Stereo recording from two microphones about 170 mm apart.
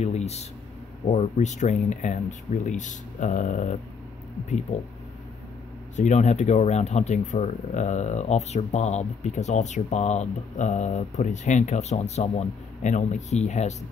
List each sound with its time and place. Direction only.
0.0 s speech: 40° left (ahead or behind)
5.9 s speech: 45° left (ahead or behind)